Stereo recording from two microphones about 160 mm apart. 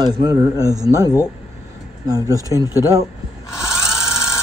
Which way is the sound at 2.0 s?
20° right (ahead or behind).